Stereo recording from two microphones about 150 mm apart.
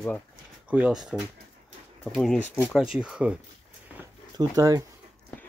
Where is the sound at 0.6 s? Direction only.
10° right (ahead or behind); by 2.6 s 10° left (ahead or behind).